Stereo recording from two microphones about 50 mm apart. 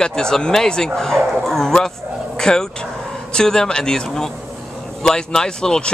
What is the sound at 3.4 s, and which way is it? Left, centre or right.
Speech, centre.